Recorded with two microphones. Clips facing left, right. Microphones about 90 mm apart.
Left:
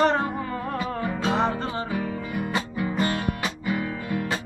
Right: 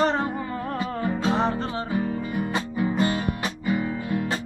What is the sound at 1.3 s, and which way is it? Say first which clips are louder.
Music: even; 5° left (ahead or behind).